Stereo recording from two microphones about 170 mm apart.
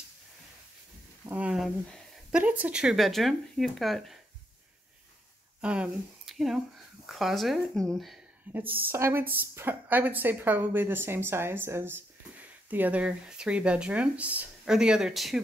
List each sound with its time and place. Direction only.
1.2 s speech: 10° right (ahead or behind)
5.6 s speech: 5° right (ahead or behind)
8.5 s speech: 10° right (ahead or behind)